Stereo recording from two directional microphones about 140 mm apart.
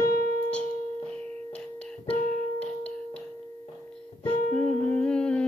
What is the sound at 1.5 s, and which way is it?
Music, 5° left (ahead or behind).